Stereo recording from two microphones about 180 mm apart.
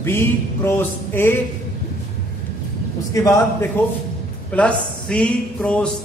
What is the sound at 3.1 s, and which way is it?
Speech, 20° left (ahead or behind).